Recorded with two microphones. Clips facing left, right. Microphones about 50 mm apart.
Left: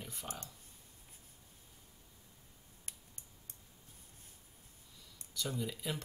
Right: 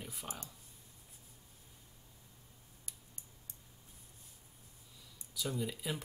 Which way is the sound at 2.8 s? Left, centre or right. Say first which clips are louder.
Left 2 dB; left.